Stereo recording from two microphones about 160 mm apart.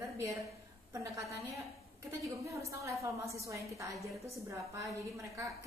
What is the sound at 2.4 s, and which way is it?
A woman's voice, 20° right (ahead or behind).